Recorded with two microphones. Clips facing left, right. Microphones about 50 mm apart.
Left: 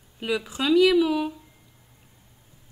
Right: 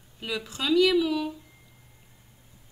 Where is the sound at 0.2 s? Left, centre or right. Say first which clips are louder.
Left 5 dB; centre.